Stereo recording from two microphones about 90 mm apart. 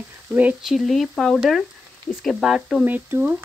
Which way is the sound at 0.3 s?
15° right (ahead or behind).